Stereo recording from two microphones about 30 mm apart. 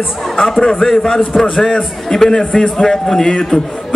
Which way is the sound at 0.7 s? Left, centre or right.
Left.